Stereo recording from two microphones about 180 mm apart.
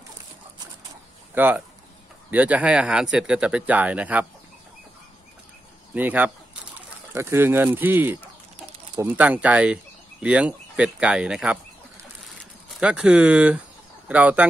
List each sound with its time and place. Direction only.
1.3 s speech: 10° right (ahead or behind)
5.9 s speech: 10° right (ahead or behind)
12.8 s speech: 5° right (ahead or behind)